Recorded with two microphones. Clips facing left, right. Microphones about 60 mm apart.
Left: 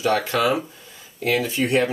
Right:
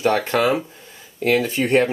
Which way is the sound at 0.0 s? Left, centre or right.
Right.